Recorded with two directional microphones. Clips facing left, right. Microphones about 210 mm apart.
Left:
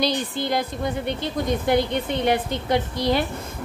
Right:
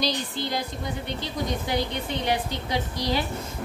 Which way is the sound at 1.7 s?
55° left (ahead or behind).